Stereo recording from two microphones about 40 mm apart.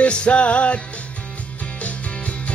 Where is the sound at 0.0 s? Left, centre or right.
Left.